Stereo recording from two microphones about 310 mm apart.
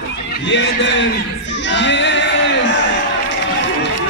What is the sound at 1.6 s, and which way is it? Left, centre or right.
Music, left.